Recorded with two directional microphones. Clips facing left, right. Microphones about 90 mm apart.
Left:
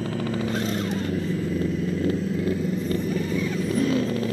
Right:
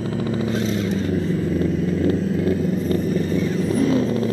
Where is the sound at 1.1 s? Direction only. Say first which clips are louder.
Right 4 dB; 40° right (ahead or behind).